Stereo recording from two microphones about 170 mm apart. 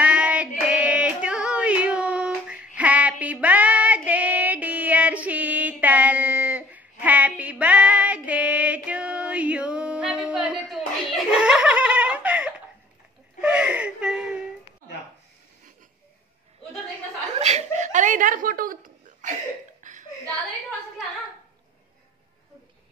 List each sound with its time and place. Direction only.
0.0 s female singing: 5° right (ahead or behind)
13.4 s whimper: 5° right (ahead or behind)
17.4 s a sound: 40° right (ahead or behind)